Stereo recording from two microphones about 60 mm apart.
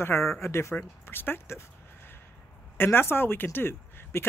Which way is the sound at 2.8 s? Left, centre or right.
Left.